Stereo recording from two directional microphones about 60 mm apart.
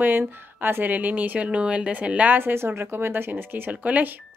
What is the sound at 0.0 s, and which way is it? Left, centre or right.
Speech, right.